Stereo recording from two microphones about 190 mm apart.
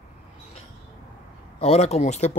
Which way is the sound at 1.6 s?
35° left (ahead or behind).